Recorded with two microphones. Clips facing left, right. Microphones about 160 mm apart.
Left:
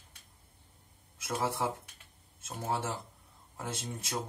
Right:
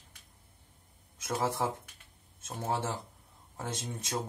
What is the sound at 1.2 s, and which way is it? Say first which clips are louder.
Speech: right 1 dB; 25° right (ahead or behind).